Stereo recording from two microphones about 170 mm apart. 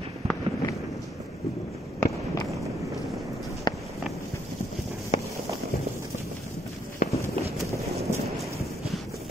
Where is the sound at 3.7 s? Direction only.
25° left (ahead or behind).